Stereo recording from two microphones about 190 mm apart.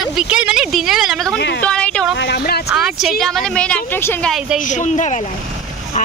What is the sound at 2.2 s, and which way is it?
Boat, 60° left (ahead or behind).